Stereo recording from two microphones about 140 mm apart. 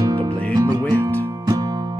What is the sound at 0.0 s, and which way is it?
Music, 25° right (ahead or behind).